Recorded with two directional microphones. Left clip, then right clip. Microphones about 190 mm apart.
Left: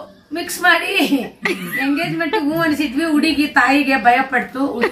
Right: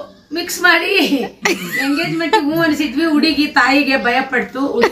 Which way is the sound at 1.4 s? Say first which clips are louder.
Right 3 dB; 25° right (ahead or behind).